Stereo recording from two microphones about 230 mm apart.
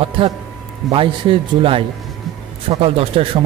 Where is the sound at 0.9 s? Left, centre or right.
Right.